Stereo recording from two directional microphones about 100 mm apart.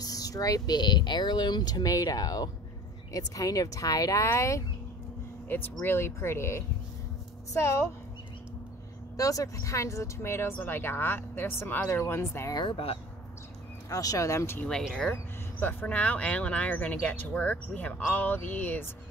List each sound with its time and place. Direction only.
0.0 s speech: 40° left (ahead or behind)
9.1 s speech: 35° left (ahead or behind)
12.7 s speech: 70° left (ahead or behind)
13.8 s speech: 35° left (ahead or behind)
14.6 s speech: 5° left (ahead or behind)